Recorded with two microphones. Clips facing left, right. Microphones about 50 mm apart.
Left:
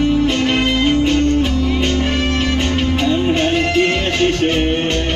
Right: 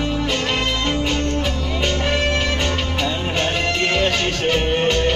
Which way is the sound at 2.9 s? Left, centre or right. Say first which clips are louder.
Left 6 dB; centre.